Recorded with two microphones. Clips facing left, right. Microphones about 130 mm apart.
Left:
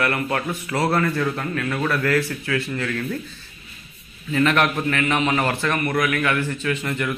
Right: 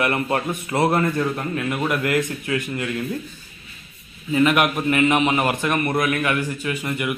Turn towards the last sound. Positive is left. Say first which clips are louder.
# even
turn(degrees=-10)  # may be behind; listen again after turning